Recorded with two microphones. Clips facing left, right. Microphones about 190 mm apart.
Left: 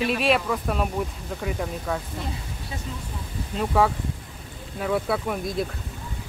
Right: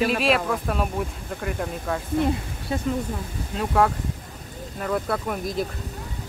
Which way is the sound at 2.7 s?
55° right (ahead or behind).